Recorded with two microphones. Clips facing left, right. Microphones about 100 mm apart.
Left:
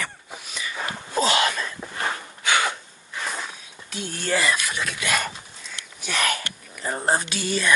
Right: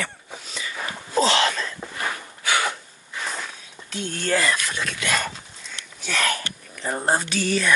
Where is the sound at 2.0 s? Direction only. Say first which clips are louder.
Left 2 dB; 25° left (ahead or behind).